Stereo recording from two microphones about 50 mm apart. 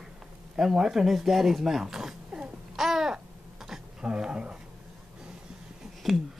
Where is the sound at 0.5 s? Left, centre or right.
Centre.